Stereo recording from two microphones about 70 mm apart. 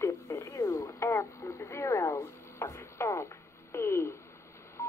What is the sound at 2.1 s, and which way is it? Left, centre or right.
Radio, left.